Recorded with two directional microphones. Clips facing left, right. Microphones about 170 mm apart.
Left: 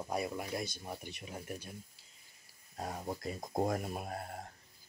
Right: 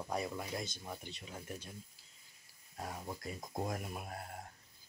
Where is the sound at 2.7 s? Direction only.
35° left (ahead or behind).